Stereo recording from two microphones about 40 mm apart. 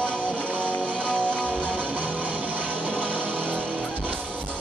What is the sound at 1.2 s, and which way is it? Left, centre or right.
Music, right.